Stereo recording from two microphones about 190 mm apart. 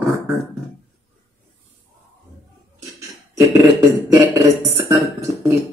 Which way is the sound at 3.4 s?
15° right (ahead or behind).